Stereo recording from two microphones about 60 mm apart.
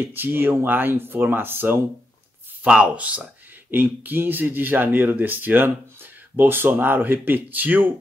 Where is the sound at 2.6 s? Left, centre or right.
Right.